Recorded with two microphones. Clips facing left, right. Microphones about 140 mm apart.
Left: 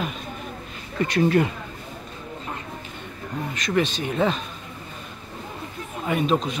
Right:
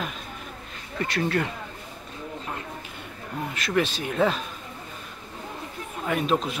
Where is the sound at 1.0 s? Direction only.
15° left (ahead or behind).